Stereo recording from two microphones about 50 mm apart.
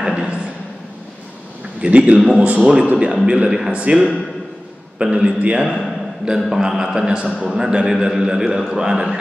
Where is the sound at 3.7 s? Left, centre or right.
Right.